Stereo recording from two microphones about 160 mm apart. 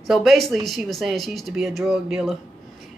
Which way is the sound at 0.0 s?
Centre (ahead or behind).